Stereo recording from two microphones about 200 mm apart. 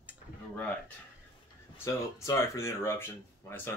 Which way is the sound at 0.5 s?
5° left (ahead or behind).